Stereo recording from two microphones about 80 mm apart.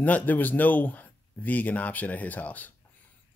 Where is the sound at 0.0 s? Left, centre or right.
Left.